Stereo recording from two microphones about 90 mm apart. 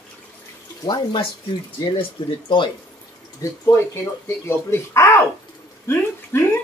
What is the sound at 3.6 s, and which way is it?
Speech, 30° left (ahead or behind).